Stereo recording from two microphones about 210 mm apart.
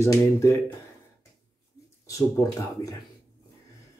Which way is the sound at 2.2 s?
15° left (ahead or behind).